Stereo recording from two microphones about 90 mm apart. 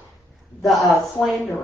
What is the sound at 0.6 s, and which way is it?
Speech, centre (ahead or behind).